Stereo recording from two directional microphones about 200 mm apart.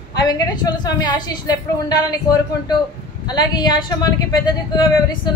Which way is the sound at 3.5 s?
20° left (ahead or behind).